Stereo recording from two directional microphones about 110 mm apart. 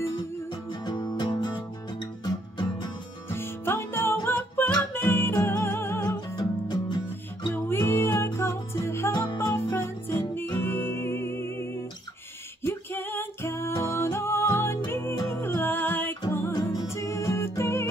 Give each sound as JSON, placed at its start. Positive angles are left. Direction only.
{"t": 0.8, "sound": "music", "side_deg": 45}
{"t": 3.3, "sound": "music", "side_deg": 20}
{"t": 6.3, "sound": "music", "side_deg": 40}
{"t": 7.5, "sound": "music", "side_deg": 20}